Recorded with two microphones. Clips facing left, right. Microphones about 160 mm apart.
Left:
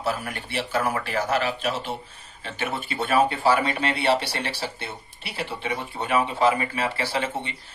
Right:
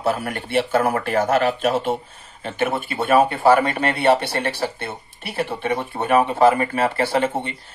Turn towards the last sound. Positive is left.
turn(degrees=-50)  # may be behind; listen again after turning